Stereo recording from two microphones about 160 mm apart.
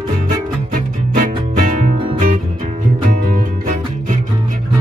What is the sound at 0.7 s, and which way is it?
Music, 55° right (ahead or behind).